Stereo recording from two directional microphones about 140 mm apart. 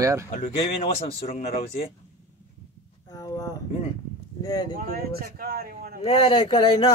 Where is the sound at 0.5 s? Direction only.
45° left (ahead or behind).